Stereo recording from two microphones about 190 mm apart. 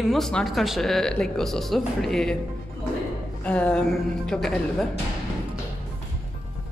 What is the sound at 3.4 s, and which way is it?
Speech, 5° left (ahead or behind).